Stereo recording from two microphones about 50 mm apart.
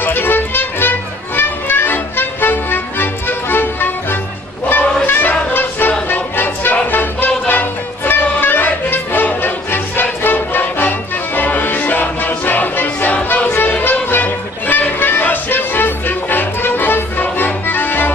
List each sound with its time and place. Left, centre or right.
0.0 s music: left